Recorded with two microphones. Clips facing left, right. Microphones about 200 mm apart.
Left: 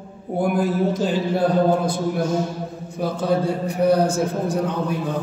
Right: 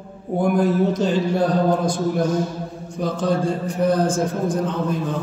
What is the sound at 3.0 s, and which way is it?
Speech, 5° left (ahead or behind).